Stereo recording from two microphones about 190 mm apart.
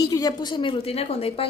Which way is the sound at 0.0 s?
20° left (ahead or behind).